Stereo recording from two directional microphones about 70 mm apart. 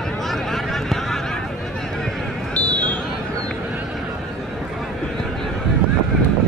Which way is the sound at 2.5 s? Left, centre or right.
Centre.